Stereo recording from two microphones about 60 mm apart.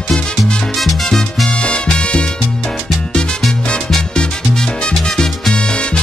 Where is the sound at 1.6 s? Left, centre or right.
Centre.